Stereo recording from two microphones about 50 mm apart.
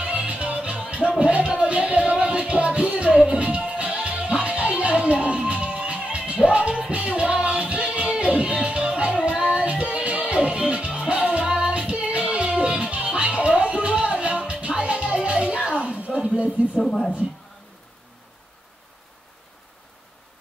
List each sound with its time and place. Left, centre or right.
0.0 s music: right
16.8 s speech: centre